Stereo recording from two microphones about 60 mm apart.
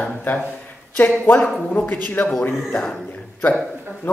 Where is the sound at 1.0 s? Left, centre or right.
Left.